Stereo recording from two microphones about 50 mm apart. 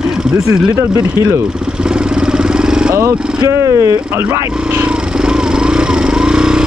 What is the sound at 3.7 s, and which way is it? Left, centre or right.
Speech, right.